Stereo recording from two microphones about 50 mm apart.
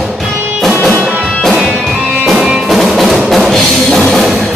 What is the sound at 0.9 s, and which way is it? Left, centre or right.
Music, right.